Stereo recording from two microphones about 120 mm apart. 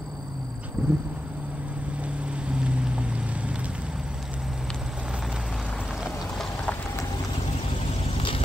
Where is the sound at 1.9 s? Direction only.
10° right (ahead or behind).